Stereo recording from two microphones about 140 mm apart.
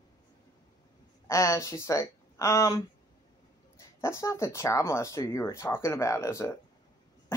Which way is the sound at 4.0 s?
20° left (ahead or behind).